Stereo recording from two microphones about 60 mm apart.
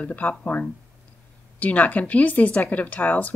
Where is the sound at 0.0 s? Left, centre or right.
Left.